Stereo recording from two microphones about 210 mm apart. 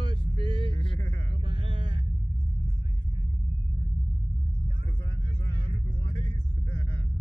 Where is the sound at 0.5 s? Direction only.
25° left (ahead or behind).